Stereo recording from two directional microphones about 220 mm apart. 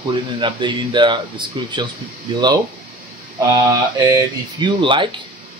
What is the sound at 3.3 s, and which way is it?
Speech, 15° right (ahead or behind).